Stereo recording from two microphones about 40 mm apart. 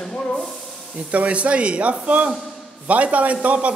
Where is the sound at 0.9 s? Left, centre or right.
Right.